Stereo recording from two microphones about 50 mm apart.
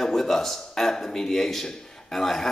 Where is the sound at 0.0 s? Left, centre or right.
Centre.